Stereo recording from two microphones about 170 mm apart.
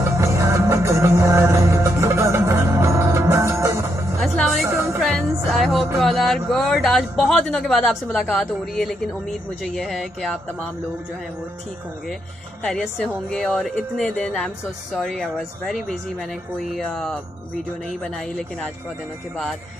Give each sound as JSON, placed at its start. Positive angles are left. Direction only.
{"t": 0.0, "sound": "music", "side_deg": -15}
{"t": 4.2, "sound": "music", "side_deg": 0}
{"t": 4.6, "sound": "music", "side_deg": -15}
{"t": 5.0, "sound": "music", "side_deg": 0}
{"t": 5.9, "sound": "speech", "side_deg": 0}
{"t": 12.6, "sound": "speech", "side_deg": 10}